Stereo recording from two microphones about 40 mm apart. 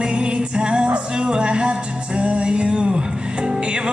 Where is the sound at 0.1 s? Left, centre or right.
Right.